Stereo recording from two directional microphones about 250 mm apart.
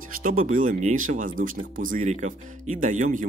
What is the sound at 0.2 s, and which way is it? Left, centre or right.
Speech, right.